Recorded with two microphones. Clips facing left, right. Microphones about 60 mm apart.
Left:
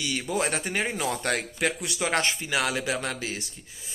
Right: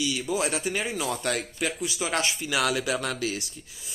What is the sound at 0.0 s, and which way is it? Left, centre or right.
Speech, left.